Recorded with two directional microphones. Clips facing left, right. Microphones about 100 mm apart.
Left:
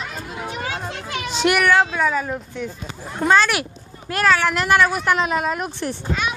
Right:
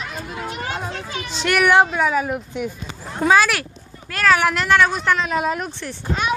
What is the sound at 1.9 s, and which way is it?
Speech, 10° right (ahead or behind).